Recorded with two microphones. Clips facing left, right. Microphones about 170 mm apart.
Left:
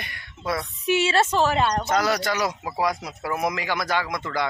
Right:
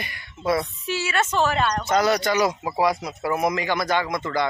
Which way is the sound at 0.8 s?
20° left (ahead or behind).